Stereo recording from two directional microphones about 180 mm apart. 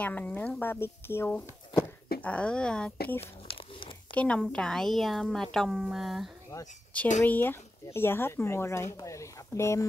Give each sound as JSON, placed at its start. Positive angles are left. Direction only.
{"t": 0.0, "sound": "a woman's voice", "side_deg": 10}
{"t": 4.1, "sound": "a woman's voice", "side_deg": 5}